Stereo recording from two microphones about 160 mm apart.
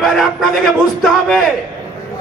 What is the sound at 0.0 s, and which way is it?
A man's voice, centre (ahead or behind).